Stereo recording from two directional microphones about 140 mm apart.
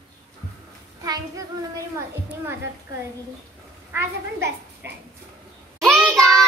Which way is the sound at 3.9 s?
15° right (ahead or behind).